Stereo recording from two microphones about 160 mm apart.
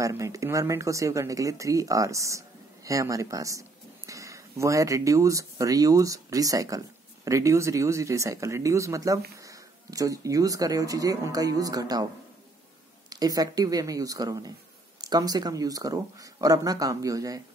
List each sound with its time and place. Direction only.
0.0 s speech: 20° right (ahead or behind)
13.1 s speech: 25° right (ahead or behind)